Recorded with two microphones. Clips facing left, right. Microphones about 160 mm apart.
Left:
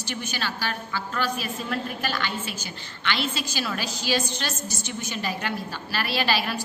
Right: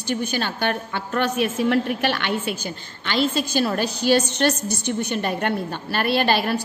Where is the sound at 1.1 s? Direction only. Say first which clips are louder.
Right 9 dB; 70° right (ahead or behind).